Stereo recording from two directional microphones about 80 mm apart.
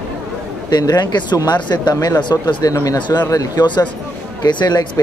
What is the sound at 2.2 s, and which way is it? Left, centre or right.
Speech, left.